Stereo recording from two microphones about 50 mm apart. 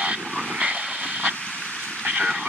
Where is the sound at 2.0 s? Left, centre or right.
Right.